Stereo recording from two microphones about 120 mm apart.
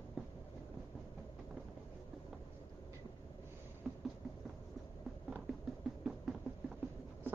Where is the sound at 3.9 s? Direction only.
5° right (ahead or behind).